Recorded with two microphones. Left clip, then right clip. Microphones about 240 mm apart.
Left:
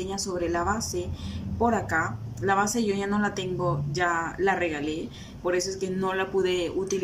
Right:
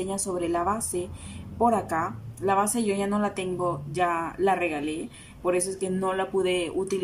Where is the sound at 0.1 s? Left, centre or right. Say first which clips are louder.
Left 1 dB; centre.